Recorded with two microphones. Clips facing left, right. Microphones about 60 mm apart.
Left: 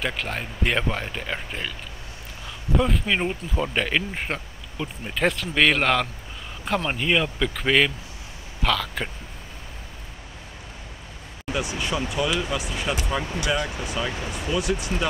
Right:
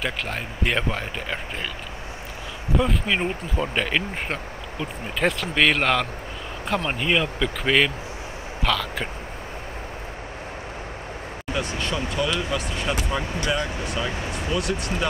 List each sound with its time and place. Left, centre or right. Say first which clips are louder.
0.0 s speech: even; centre
2.7 s speech: even; centre
11.5 s speech: even; centre